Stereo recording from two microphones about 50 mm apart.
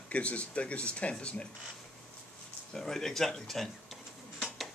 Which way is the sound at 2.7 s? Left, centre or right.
Centre.